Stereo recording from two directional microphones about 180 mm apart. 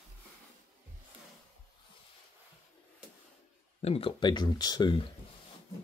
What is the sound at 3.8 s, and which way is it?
Speech, 30° left (ahead or behind).